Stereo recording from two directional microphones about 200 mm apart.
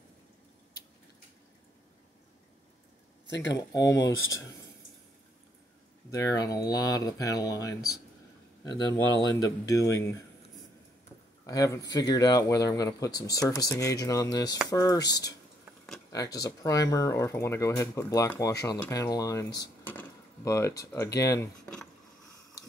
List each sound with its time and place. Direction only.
3.3 s speech: 65° left (ahead or behind)
3.5 s speech: 15° left (ahead or behind)
6.0 s speech: 15° left (ahead or behind)
11.4 s speech: 15° left (ahead or behind)